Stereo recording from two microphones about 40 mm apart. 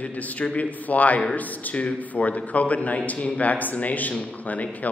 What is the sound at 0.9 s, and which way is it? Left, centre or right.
A man's voice, left.